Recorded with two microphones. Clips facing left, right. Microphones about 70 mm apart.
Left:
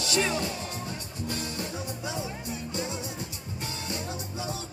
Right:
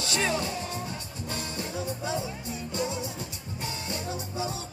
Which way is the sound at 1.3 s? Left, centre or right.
Right.